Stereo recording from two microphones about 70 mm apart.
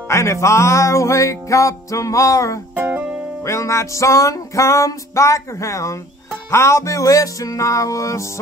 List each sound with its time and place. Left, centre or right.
0.1 s music: left
2.7 s music: right
3.4 s music: left